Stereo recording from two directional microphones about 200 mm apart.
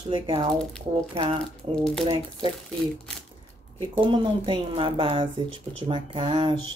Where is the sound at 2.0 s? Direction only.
25° right (ahead or behind).